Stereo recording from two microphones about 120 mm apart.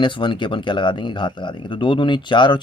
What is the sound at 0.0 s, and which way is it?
Speech, 40° left (ahead or behind).